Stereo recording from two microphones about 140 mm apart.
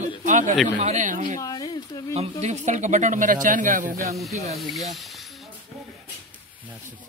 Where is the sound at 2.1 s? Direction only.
50° right (ahead or behind); by 3.9 s 70° right (ahead or behind).